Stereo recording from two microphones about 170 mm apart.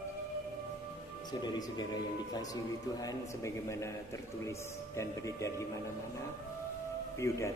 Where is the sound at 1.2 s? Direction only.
25° left (ahead or behind).